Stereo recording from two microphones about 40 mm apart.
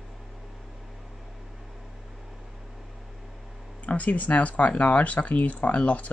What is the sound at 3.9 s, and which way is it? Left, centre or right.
Speech, left.